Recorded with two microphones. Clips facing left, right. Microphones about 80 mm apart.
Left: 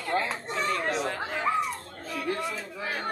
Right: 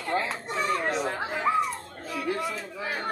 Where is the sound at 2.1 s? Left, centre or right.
Centre.